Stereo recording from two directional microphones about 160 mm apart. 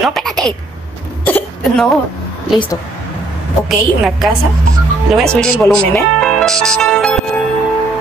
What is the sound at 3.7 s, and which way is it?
Speech, centre (ahead or behind).